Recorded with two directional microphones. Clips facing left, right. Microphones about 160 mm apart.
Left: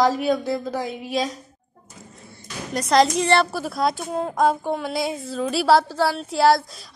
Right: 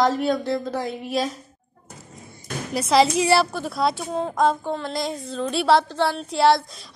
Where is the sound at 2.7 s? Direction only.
5° right (ahead or behind).